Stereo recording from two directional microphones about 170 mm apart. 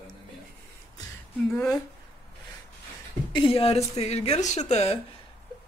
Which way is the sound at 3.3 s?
30° left (ahead or behind).